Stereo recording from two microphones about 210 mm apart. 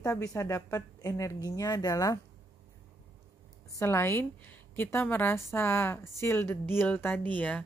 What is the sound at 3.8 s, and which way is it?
A woman's voice, 10° left (ahead or behind).